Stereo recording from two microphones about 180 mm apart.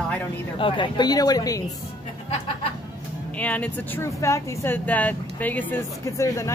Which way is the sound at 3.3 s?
10° left (ahead or behind).